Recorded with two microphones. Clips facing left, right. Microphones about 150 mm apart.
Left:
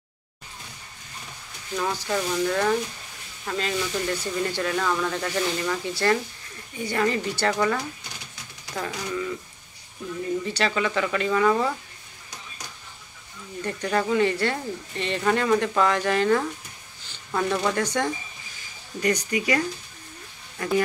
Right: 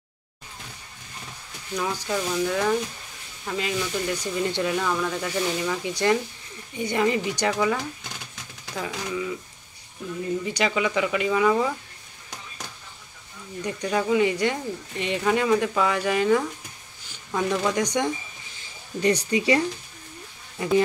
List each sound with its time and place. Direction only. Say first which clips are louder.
1.8 s speech: left 1 dB; centre (ahead or behind)
10.4 s speech: right 2 dB; 10° right (ahead or behind)
13.6 s speech: even; 10° right (ahead or behind)
17.1 s a sound: even; 10° right (ahead or behind)
17.7 s speech: right 1 dB; 20° right (ahead or behind)
18.9 s speech: right 2 dB; 30° right (ahead or behind)
20.5 s speech: right 3 dB; 15° right (ahead or behind)